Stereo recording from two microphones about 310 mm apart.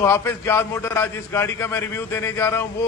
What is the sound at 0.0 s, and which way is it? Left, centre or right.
A man's voice, centre.